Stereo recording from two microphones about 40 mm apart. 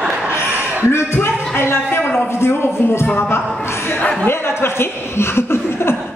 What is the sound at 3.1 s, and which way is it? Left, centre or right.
Speech, left.